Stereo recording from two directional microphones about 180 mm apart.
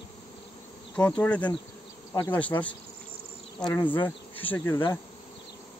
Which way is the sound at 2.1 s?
20° left (ahead or behind).